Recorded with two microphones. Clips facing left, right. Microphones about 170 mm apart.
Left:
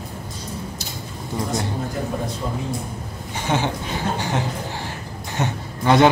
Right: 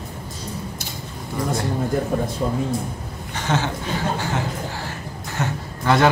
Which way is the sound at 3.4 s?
15° left (ahead or behind).